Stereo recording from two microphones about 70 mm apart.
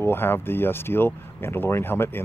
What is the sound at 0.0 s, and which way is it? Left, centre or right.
Speech, left.